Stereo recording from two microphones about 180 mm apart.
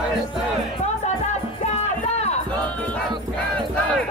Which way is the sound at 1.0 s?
40° left (ahead or behind).